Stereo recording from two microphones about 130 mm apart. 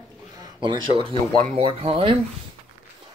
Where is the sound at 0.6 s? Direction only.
40° right (ahead or behind).